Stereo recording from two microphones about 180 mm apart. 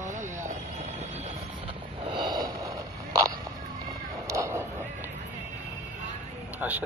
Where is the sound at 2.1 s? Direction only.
25° right (ahead or behind).